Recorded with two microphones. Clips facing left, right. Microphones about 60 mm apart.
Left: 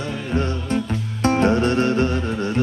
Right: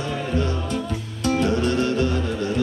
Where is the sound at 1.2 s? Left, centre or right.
Left.